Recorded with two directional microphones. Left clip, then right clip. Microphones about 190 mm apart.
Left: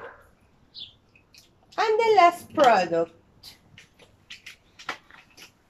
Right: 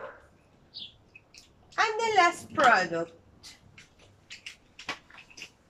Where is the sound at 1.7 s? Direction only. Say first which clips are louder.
Left 5 dB; 20° left (ahead or behind).